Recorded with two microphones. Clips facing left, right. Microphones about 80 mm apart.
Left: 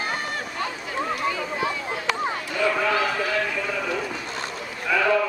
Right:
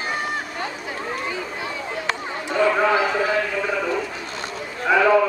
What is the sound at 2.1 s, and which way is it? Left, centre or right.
Run, right.